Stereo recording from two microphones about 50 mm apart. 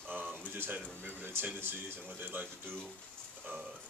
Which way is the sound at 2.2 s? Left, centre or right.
Right.